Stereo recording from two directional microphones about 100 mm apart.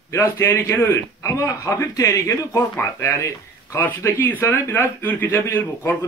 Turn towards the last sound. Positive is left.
turn(degrees=20)  # may be behind; listen again after turning